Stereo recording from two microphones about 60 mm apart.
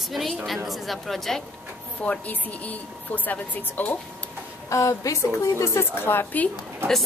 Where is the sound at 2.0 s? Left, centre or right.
Left.